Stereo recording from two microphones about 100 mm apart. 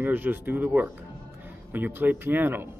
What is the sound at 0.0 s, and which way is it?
A man's voice, 20° right (ahead or behind).